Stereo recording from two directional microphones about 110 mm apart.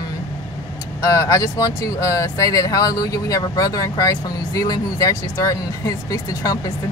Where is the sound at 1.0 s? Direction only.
30° left (ahead or behind).